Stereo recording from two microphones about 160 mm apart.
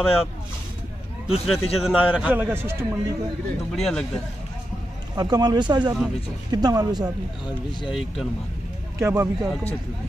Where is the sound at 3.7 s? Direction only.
Centre (ahead or behind).